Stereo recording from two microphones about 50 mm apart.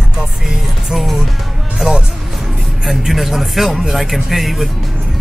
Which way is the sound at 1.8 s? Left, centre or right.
Centre.